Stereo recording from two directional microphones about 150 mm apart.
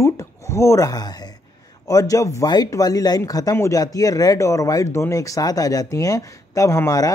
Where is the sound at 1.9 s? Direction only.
20° left (ahead or behind).